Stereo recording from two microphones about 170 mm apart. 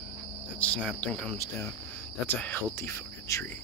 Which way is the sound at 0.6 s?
10° left (ahead or behind).